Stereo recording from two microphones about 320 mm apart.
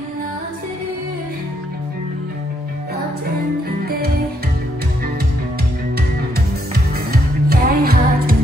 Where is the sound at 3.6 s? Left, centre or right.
Right.